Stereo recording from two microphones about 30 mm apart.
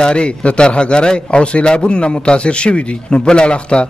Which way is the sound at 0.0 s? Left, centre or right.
Left.